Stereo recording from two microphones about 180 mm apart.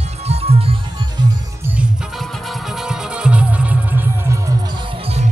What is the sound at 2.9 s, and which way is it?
Music, 5° right (ahead or behind).